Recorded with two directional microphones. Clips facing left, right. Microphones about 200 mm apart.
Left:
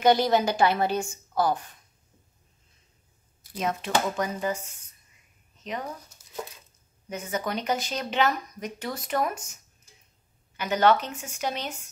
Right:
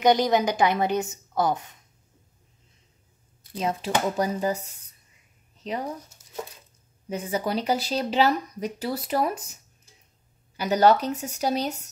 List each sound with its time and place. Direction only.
0.0 s a woman's voice: 15° right (ahead or behind)
3.5 s speech: 30° right (ahead or behind)
7.1 s speech: 30° right (ahead or behind)